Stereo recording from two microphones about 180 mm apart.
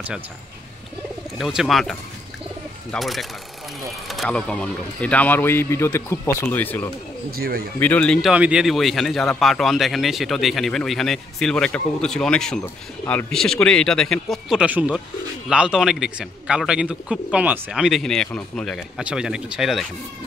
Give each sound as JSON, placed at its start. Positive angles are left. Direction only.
{"t": 1.4, "sound": "speech", "side_deg": 0}
{"t": 7.2, "sound": "speech", "side_deg": -55}
{"t": 7.8, "sound": "speech", "side_deg": 10}